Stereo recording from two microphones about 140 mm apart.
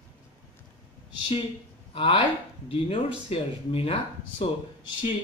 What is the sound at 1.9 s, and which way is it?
Speech, 40° left (ahead or behind).